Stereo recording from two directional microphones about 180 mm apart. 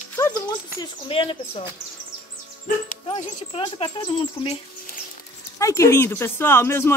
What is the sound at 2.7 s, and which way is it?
Speech, 50° left (ahead or behind).